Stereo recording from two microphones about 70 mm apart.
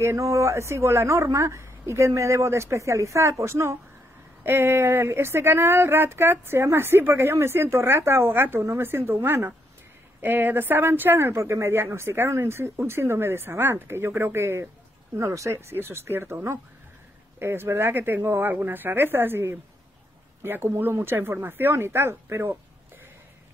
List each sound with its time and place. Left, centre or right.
0.0 s a woman's voice: right
11.1 s speech: right